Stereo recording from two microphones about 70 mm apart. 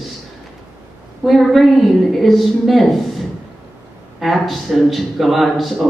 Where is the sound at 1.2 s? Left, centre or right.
Centre.